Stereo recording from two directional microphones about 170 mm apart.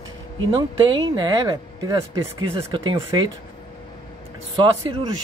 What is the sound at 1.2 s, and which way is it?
Speech, 25° right (ahead or behind).